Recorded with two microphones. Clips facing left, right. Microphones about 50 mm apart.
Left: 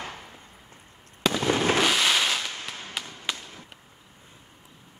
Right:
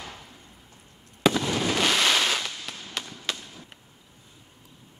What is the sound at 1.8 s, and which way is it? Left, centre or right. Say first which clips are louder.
Fireworks: even; centre.